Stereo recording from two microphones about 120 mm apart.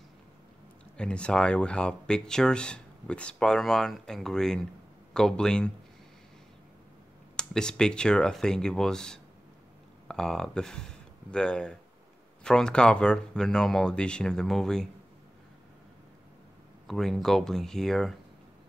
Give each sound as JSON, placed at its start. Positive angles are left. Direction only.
{"t": 0.9, "sound": "speech", "side_deg": 10}
{"t": 7.3, "sound": "speech", "side_deg": 5}
{"t": 16.8, "sound": "speech", "side_deg": 0}